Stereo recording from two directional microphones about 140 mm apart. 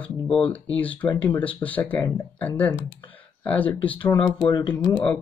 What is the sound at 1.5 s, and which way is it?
Speech, 10° left (ahead or behind).